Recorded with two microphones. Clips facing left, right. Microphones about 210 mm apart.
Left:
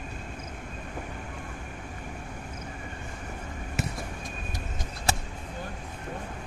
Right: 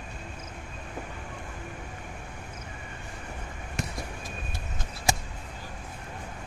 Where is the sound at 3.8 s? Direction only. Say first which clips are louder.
Left 2 dB; 5° left (ahead or behind).